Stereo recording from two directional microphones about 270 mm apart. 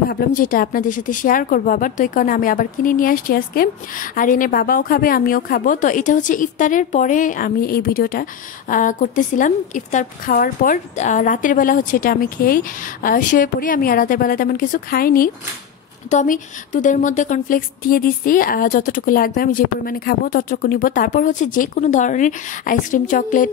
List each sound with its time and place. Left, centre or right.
0.1 s a woman's voice: left